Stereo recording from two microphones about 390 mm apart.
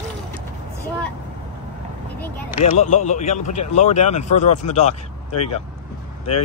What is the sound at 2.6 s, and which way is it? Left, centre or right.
Speech, centre.